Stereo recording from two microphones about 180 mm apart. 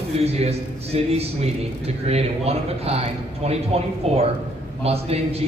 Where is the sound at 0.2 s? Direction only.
35° right (ahead or behind).